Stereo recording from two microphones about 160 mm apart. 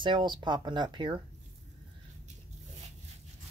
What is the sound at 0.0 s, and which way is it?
Speech, 30° right (ahead or behind).